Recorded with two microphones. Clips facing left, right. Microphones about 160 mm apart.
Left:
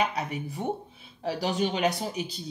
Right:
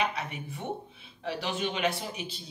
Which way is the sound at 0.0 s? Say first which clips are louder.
Left 3 dB; 40° left (ahead or behind).